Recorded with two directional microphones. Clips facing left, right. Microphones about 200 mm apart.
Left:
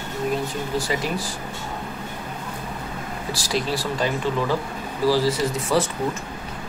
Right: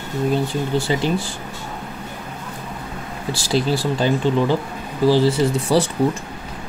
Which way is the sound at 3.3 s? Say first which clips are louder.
Right 6 dB; 30° right (ahead or behind).